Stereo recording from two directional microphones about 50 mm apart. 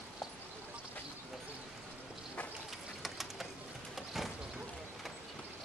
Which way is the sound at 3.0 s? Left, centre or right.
Centre.